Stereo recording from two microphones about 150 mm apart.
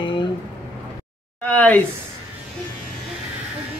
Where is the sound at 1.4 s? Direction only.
10° left (ahead or behind).